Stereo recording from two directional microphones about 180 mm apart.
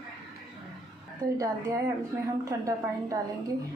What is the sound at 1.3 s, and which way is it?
A woman's voice, 20° right (ahead or behind).